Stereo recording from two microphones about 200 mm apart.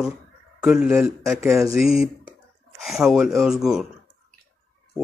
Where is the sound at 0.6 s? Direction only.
5° right (ahead or behind).